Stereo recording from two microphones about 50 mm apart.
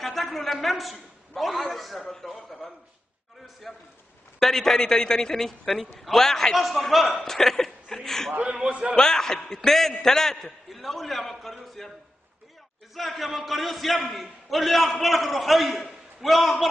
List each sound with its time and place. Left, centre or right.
0.0 s a man's voice: centre
8.3 s a man's voice: right
8.9 s a woman's voice: centre
12.9 s a man's voice: centre